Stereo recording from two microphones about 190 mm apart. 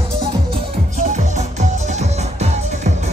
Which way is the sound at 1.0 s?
35° right (ahead or behind).